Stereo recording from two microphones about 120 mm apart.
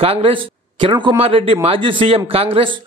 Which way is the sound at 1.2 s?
55° right (ahead or behind).